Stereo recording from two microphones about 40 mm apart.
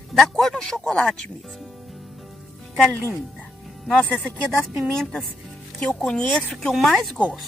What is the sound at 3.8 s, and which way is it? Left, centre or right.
A woman's voice, centre.